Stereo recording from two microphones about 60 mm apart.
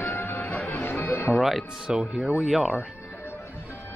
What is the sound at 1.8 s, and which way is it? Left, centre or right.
Speech, centre.